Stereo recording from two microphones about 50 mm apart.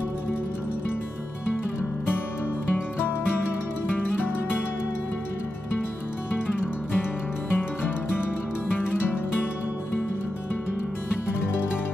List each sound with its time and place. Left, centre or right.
2.7 s music: left
7.5 s music: left